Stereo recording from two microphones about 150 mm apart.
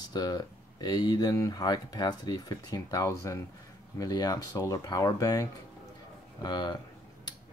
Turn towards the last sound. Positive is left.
turn(degrees=30)  # may be behind; listen again after turning